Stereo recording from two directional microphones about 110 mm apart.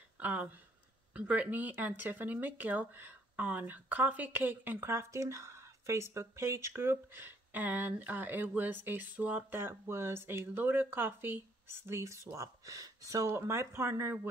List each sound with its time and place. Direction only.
0.2 s speech: 15° right (ahead or behind)